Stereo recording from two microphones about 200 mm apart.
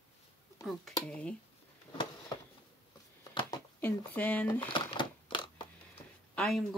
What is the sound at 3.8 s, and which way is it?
Speech, 10° left (ahead or behind).